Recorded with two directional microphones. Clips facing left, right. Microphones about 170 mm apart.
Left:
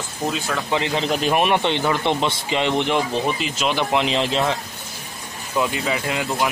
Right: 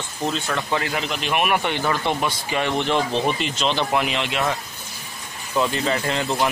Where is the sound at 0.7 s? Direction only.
25° left (ahead or behind).